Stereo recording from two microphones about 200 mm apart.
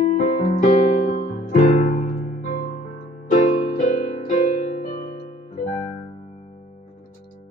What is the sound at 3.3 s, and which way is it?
Music, 40° left (ahead or behind).